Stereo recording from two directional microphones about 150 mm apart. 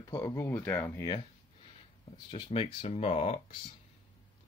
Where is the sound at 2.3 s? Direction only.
35° left (ahead or behind).